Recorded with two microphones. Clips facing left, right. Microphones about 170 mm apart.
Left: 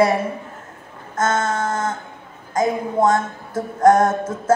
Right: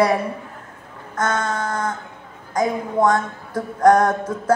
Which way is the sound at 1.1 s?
25° left (ahead or behind).